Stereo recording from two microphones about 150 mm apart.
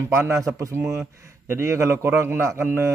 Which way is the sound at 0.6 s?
20° right (ahead or behind).